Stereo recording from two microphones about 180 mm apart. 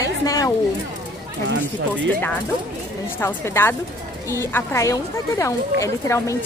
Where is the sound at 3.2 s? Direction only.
15° left (ahead or behind).